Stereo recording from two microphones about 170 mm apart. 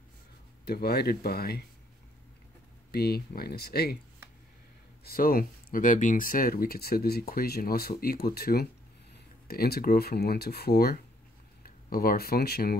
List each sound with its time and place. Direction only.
0.7 s speech: 70° left (ahead or behind)
2.9 s speech: 65° left (ahead or behind)
5.0 s speech: 60° left (ahead or behind)